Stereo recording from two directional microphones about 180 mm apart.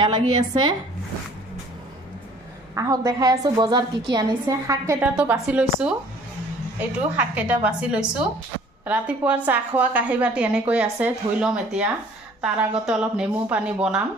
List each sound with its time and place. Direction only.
0.0 s a woman's voice: 25° right (ahead or behind)
2.7 s a woman's voice: 20° right (ahead or behind)